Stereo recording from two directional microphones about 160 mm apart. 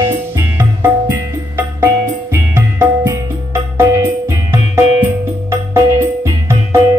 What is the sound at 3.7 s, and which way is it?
Music, 15° right (ahead or behind).